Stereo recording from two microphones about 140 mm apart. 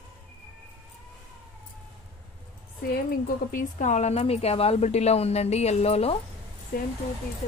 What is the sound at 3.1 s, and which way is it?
Speech, 85° left.